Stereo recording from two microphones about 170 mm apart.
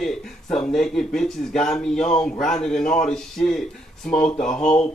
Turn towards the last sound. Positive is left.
turn(degrees=5)  # may be behind; listen again after turning